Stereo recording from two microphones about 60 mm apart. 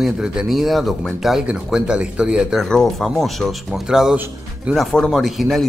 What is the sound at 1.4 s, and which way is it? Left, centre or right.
A man's voice, centre.